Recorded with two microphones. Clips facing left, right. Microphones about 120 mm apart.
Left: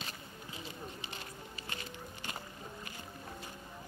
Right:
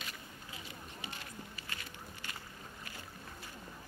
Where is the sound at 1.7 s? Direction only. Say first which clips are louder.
Left 3 dB; 25° left (ahead or behind).